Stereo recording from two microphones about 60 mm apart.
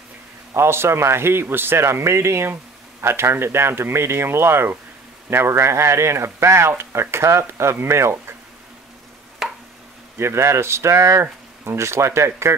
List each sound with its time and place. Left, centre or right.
0.5 s speech: right
9.4 s chopping: centre
10.1 s speech: right